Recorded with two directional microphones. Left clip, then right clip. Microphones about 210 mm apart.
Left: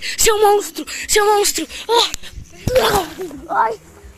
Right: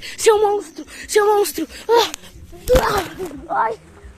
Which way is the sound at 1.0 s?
15° right (ahead or behind).